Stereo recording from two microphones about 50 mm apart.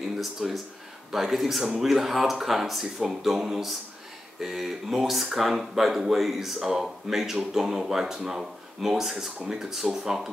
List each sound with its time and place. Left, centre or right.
0.2 s speech: centre